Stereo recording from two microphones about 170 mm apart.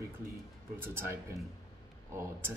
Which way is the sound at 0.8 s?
15° right (ahead or behind).